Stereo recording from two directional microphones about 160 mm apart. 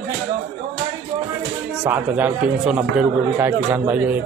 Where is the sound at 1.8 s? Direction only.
10° right (ahead or behind).